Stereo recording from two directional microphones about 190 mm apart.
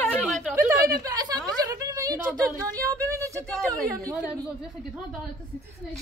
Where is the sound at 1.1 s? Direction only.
20° right (ahead or behind).